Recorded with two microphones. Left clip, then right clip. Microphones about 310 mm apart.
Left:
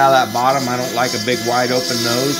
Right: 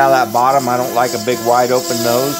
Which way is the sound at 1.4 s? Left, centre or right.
Right.